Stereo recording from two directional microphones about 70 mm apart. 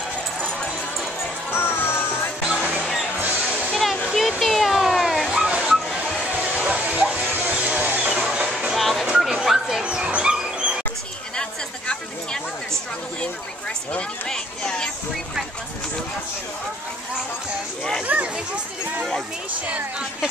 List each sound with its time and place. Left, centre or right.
0.4 s a sound: centre
1.5 s music: left
2.6 s music: centre
3.7 s a sound: centre
6.4 s music: right
8.2 s music: centre
8.7 s music: centre
9.2 s dog: centre
13.9 s speech: centre
18.0 s speech: right
19.7 s speech: centre